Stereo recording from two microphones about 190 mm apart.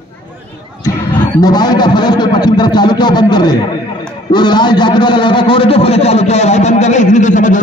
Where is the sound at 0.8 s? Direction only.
20° left (ahead or behind).